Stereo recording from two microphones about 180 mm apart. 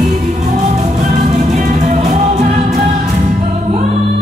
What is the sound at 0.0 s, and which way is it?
Music, 40° right (ahead or behind).